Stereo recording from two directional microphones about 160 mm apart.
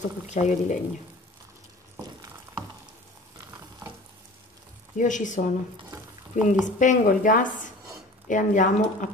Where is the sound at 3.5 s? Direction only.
15° right (ahead or behind).